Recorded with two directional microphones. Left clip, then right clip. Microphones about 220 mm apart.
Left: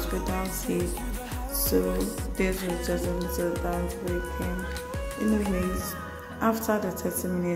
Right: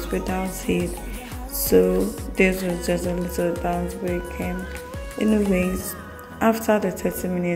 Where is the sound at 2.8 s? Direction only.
15° right (ahead or behind).